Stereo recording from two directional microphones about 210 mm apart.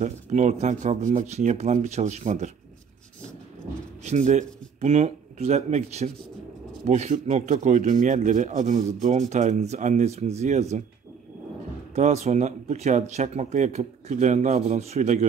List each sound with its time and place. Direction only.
0.0 s speech: 35° right (ahead or behind)
4.0 s speech: 35° right (ahead or behind)
11.9 s speech: 30° right (ahead or behind)